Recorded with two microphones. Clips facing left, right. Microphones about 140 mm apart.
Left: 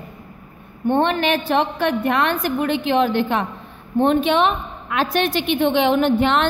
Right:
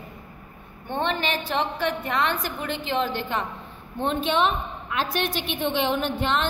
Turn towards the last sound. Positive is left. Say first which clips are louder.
# left 8 dB
turn(degrees=70)  # may be behind; listen again after turning